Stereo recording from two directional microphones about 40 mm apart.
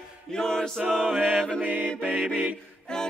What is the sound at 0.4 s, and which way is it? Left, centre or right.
Choir, centre.